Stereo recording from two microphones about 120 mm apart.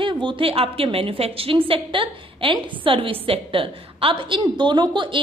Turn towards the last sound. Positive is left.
turn(degrees=-45)  # may be behind; listen again after turning